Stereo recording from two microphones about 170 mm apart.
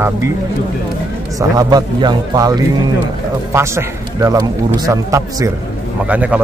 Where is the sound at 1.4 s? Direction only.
20° right (ahead or behind).